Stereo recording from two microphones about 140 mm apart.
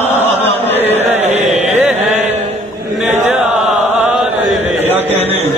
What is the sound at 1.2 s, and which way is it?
Chant, 55° right (ahead or behind).